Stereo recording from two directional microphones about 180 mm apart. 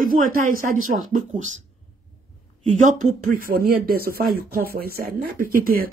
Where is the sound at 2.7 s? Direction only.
45° right (ahead or behind).